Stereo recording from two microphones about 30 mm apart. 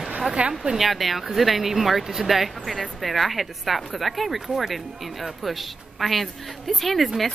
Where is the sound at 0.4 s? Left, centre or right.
Right.